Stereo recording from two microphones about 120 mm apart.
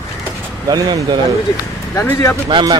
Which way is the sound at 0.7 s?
30° right (ahead or behind).